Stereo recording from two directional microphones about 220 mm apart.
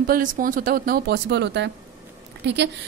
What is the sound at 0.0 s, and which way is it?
Speech, 40° right (ahead or behind).